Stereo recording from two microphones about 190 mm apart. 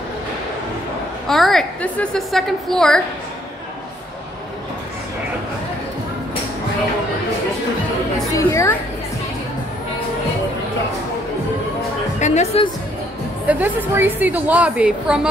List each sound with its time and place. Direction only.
1.2 s a woman's voice: centre (ahead or behind)
8.3 s a sound: 15° left (ahead or behind)
12.2 s music: 35° left (ahead or behind)
13.5 s a woman's voice: 10° right (ahead or behind)